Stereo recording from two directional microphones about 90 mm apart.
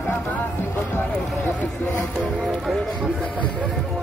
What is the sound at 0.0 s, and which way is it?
Music, 20° left (ahead or behind).